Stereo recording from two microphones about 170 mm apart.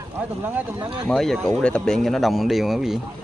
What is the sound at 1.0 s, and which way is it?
Speech, centre (ahead or behind).